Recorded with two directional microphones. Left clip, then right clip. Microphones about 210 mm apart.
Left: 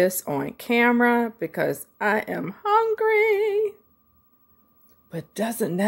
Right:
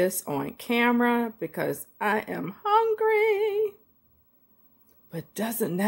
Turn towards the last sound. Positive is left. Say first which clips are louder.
# left 3 dB
turn(degrees=15)  # may be behind; listen again after turning